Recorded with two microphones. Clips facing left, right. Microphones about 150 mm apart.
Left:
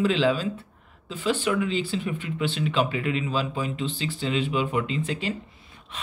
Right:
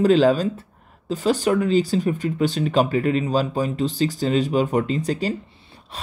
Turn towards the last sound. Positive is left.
turn(degrees=-40)  # may be behind; listen again after turning